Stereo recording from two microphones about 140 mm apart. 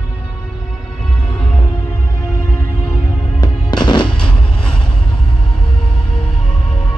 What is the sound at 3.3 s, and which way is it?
Music, 30° left (ahead or behind).